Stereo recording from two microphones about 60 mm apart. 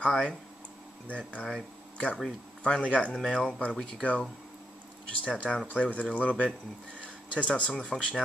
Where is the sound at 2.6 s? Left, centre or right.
Centre.